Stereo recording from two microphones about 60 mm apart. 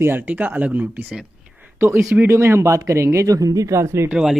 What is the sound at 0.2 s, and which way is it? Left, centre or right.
Speech, right.